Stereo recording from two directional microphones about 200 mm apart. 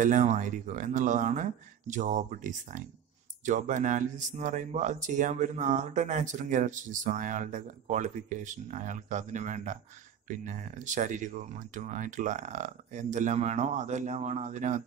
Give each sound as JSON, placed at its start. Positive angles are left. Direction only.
{"t": 0.0, "sound": "speech", "side_deg": -35}